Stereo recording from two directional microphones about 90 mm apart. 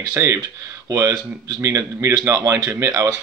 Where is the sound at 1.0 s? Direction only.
45° right (ahead or behind).